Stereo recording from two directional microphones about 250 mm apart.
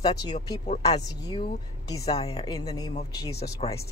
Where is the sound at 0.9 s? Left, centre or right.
Centre.